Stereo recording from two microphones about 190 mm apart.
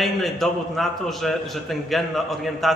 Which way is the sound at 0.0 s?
Centre (ahead or behind).